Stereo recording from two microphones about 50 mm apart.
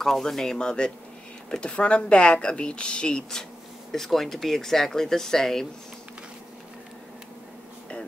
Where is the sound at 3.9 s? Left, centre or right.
Centre.